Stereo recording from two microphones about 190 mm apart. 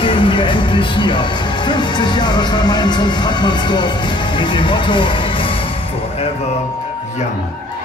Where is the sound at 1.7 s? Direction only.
25° left (ahead or behind).